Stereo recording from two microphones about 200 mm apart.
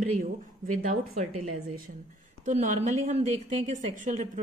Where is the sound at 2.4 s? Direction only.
35° right (ahead or behind).